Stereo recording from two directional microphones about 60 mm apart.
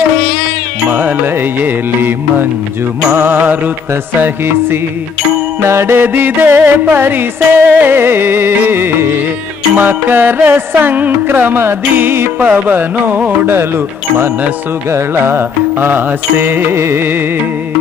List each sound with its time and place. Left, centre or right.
0.8 s music: right
14.9 s music: right